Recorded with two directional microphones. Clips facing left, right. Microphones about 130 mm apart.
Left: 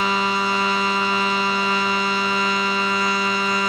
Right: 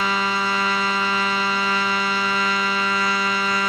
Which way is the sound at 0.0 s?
20° left (ahead or behind).